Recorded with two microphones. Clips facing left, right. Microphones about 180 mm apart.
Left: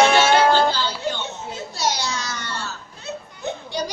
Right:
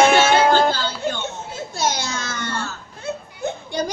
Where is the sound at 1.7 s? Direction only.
50° right (ahead or behind).